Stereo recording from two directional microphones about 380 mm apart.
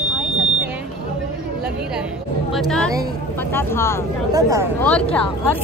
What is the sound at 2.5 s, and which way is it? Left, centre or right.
Speech, centre.